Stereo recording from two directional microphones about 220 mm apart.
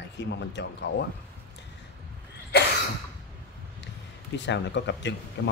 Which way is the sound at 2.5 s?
45° left (ahead or behind).